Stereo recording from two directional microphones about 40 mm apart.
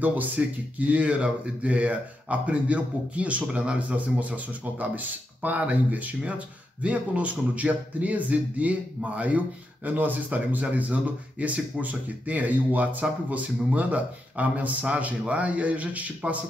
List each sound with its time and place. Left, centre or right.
0.4 s speech: right
10.6 s a man's voice: right